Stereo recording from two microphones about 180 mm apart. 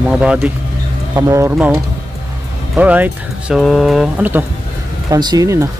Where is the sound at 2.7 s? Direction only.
10° right (ahead or behind).